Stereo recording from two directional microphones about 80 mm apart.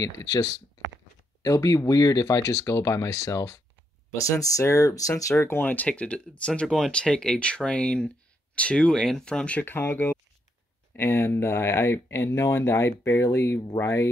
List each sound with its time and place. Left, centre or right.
0.0 s speech: left
5.4 s speech: left